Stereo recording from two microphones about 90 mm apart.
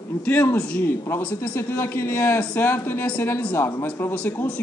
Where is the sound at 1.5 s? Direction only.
25° left (ahead or behind).